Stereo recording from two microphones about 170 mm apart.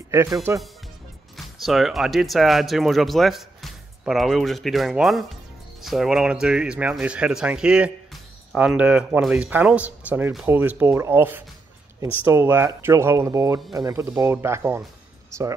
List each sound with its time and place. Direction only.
0.1 s speech: 15° right (ahead or behind)
1.3 s speech: centre (ahead or behind)